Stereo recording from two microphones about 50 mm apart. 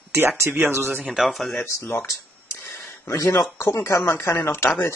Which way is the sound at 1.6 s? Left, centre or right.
Left.